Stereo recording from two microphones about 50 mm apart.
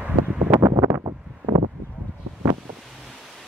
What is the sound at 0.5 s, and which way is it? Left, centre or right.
Wind noise, right.